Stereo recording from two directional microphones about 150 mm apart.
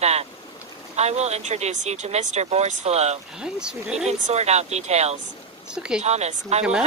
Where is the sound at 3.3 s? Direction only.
5° right (ahead or behind).